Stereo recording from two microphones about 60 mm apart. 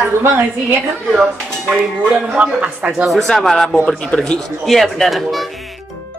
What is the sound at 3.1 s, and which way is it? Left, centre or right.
Speech, centre.